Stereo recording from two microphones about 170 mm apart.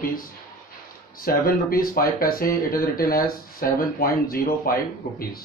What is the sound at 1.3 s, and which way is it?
Speech, 60° left (ahead or behind).